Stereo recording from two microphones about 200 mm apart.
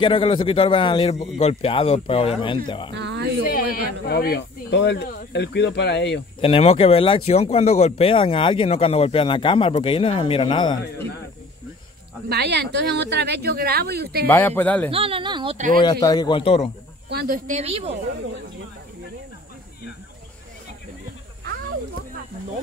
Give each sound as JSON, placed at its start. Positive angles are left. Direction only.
{"t": 0.0, "sound": "speech", "side_deg": 25}
{"t": 2.9, "sound": "a sound", "side_deg": -60}
{"t": 3.5, "sound": "speech", "side_deg": 45}
{"t": 6.4, "sound": "speech", "side_deg": 30}
{"t": 12.3, "sound": "speech", "side_deg": -55}
{"t": 14.2, "sound": "speech", "side_deg": 10}
{"t": 14.9, "sound": "speech", "side_deg": -30}
{"t": 15.5, "sound": "a woman's voice", "side_deg": -40}
{"t": 15.8, "sound": "speech", "side_deg": 20}
{"t": 17.1, "sound": "speech", "side_deg": -55}
{"t": 17.5, "sound": "a woman's voice", "side_deg": -30}